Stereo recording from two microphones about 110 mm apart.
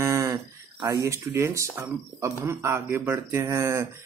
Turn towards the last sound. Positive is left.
turn(degrees=-25)  # may be behind; listen again after turning